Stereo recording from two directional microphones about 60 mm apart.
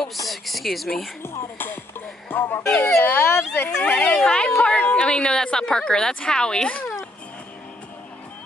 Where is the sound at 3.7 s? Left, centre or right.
Left.